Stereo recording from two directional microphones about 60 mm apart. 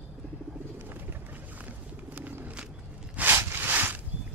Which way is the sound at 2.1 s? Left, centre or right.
Right.